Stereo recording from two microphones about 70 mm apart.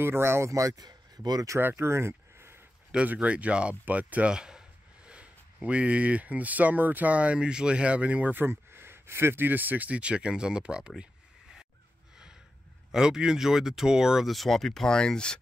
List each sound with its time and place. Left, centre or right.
0.0 s speech: right
0.8 s a sound: right
1.6 s speech: right
3.1 s speech: centre
12.9 s speech: centre